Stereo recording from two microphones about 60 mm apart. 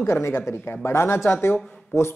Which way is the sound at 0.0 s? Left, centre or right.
Left.